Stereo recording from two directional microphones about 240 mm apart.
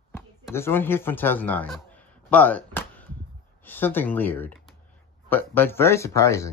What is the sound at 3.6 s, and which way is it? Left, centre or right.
Speech, centre.